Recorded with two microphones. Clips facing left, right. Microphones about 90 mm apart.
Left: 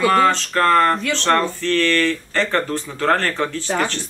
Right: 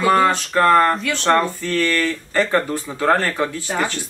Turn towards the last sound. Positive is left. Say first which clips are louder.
# left 1 dB
turn(degrees=-10)  # may be behind; listen again after turning